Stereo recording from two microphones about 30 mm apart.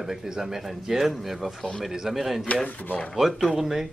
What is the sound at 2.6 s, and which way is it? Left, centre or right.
Speech, left.